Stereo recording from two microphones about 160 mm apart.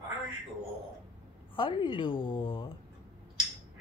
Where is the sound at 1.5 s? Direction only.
30° left (ahead or behind).